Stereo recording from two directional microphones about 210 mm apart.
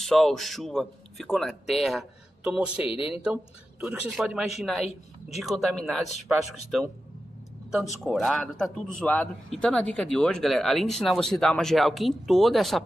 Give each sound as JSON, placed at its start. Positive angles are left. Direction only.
{"t": 0.0, "sound": "a man's voice", "side_deg": 0}
{"t": 2.8, "sound": "speech", "side_deg": 25}
{"t": 3.8, "sound": "a man's voice", "side_deg": -5}